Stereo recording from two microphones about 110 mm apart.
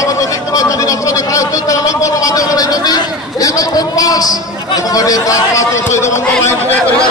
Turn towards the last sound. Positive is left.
turn(degrees=20)  # may be behind; listen again after turning